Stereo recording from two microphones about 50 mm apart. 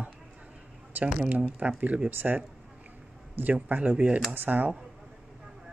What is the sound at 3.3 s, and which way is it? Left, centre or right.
Speech, right.